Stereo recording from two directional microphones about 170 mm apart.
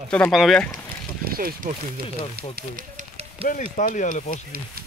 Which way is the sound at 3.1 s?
40° right (ahead or behind).